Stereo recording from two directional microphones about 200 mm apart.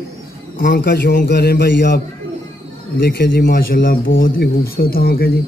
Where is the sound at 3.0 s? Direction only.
55° left (ahead or behind).